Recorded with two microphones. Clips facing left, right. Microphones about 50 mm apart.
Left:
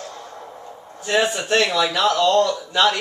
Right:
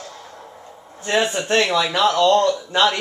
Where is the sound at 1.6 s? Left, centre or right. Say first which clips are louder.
Right 1 dB; centre.